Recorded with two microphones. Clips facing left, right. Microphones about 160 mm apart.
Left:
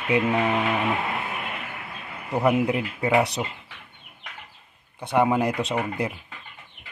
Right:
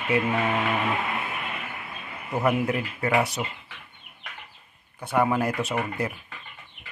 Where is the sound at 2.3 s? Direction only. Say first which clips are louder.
Left 3 dB; 20° left (ahead or behind).